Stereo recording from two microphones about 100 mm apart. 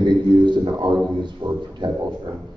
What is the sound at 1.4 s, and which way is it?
Speech, 60° right (ahead or behind).